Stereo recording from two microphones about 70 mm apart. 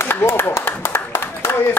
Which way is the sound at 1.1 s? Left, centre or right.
Left.